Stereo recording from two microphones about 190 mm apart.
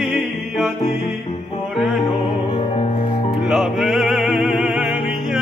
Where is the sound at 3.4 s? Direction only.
Centre (ahead or behind).